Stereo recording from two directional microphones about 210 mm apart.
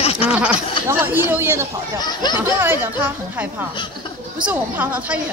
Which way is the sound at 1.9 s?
20° left (ahead or behind).